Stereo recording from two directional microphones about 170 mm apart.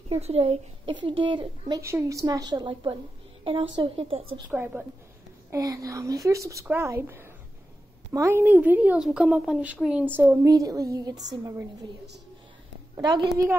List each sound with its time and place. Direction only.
0.1 s a woman's voice: 35° right (ahead or behind)
1.8 s a woman's voice: 15° right (ahead or behind); by 4.2 s 30° right (ahead or behind)
4.5 s speech: 10° right (ahead or behind)
12.9 s speech: 25° right (ahead or behind)